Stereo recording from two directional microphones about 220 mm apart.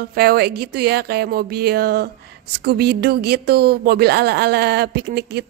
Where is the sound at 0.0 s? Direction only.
45° right (ahead or behind).